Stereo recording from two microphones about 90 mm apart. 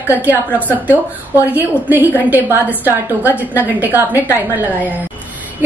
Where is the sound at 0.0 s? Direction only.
20° right (ahead or behind).